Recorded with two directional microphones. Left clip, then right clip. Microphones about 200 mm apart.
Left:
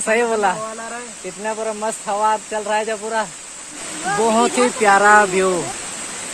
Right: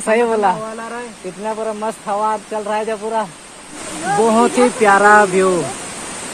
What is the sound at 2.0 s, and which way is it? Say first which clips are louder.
Speech: even; 15° left (ahead or behind).